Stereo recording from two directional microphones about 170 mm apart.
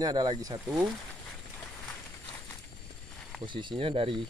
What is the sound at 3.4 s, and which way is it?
Speech, 30° right (ahead or behind).